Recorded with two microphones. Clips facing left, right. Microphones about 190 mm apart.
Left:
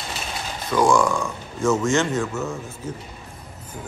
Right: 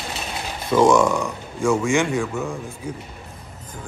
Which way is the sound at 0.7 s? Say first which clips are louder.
Right 3 dB; 20° right (ahead or behind).